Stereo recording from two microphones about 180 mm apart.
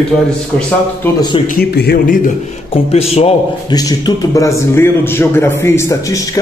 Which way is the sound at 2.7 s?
35° left (ahead or behind).